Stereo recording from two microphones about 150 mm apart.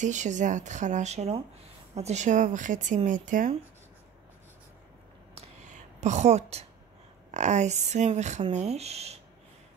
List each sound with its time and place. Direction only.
0.0 s speech: 55° right (ahead or behind)
5.3 s a sound: 50° right (ahead or behind)
7.2 s speech: 50° right (ahead or behind)